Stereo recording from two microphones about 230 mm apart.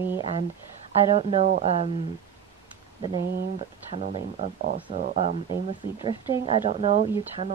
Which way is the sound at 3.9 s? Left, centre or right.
Right.